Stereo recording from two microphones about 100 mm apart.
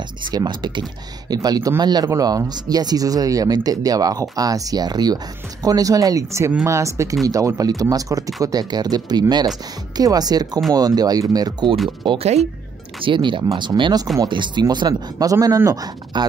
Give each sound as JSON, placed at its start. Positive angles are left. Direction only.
{"t": 0.3, "sound": "speech", "side_deg": -45}
{"t": 12.2, "sound": "speech", "side_deg": -90}
{"t": 13.0, "sound": "speech", "side_deg": -55}